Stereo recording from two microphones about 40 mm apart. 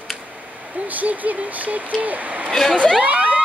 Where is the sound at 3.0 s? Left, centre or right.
Right.